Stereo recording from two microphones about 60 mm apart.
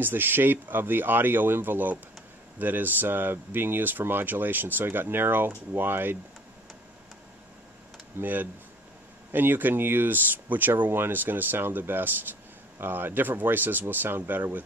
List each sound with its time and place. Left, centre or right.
0.0 s speech: right
8.2 s speech: right